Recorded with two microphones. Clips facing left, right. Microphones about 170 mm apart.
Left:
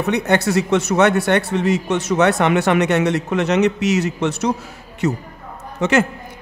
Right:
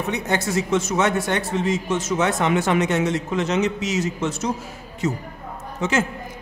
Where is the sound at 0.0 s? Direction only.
65° left (ahead or behind).